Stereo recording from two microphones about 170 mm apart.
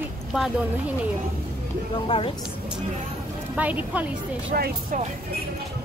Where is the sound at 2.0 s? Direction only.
30° left (ahead or behind).